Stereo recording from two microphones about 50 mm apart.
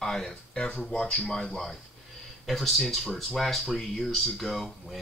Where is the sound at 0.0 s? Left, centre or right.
Centre.